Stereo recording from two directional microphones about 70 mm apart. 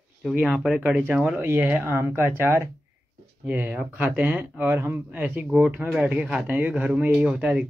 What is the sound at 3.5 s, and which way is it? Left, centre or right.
Speech, right.